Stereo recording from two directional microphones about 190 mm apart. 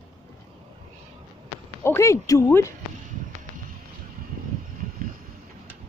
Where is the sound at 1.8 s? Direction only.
15° left (ahead or behind).